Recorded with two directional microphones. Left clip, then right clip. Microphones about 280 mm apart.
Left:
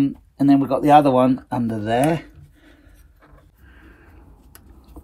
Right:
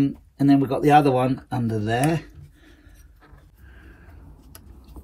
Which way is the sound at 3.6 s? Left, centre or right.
Left.